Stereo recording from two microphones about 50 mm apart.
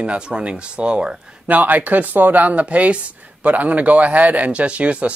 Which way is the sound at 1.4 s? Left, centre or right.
Right.